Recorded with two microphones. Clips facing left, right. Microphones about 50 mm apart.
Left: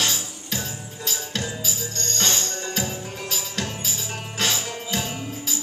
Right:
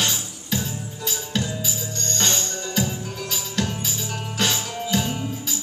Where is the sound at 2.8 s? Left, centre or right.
Centre.